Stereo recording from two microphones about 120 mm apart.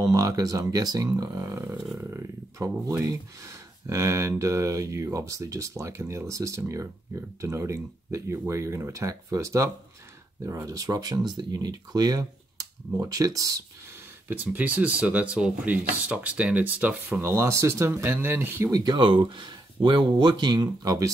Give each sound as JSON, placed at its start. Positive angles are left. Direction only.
{"t": 0.0, "sound": "speech", "side_deg": -30}
{"t": 2.0, "sound": "a sound", "side_deg": -25}
{"t": 2.7, "sound": "speech", "side_deg": -25}
{"t": 14.2, "sound": "speech", "side_deg": -15}
{"t": 18.7, "sound": "speech", "side_deg": -35}